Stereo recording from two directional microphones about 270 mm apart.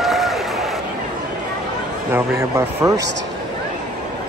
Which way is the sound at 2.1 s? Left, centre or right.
Centre.